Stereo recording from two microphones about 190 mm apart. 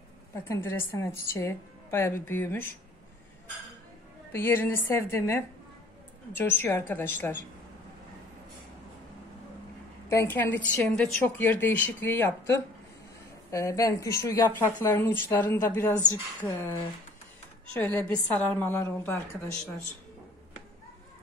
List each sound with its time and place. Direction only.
0.5 s a woman's voice: 10° left (ahead or behind)
4.3 s a woman's voice: 10° left (ahead or behind)
10.0 s a woman's voice: 10° left (ahead or behind)
17.7 s a woman's voice: 10° left (ahead or behind)